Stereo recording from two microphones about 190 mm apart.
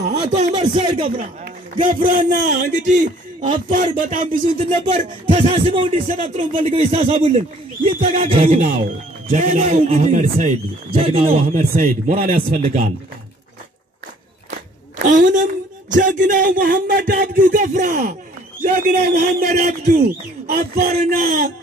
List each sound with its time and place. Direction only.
0.1 s a sound: 20° right (ahead or behind)
0.6 s speech: 25° right (ahead or behind)
1.1 s speech: 45° right (ahead or behind)
5.3 s speech: 30° right (ahead or behind)
5.9 s speech: 45° right (ahead or behind)
6.3 s speech: 30° right (ahead or behind)
9.3 s speech: 45° right (ahead or behind)
11.0 s speech: 30° right (ahead or behind)
11.5 s speech: 45° right (ahead or behind)
15.0 s speech: 45° right (ahead or behind)
20.0 s speech: 55° right (ahead or behind)
20.9 s speech: 45° right (ahead or behind)